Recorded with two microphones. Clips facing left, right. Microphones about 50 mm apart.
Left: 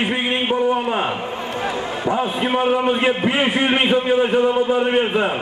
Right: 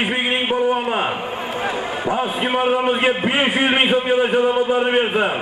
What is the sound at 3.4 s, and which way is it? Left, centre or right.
A man's voice, right.